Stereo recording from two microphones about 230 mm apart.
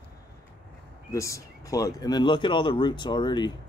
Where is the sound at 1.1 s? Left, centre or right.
Centre.